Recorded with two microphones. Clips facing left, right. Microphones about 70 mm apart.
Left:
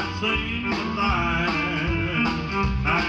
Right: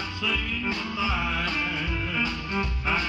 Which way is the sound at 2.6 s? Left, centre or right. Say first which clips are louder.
Left 2 dB; centre.